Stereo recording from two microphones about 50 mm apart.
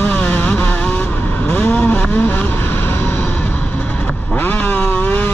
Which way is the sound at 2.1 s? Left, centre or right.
Left.